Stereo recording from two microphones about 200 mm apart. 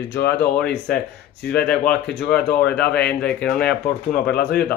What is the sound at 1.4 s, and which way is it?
Speech, 55° left (ahead or behind).